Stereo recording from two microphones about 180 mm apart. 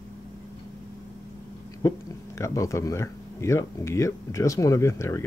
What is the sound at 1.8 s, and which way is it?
Speech, 15° left (ahead or behind).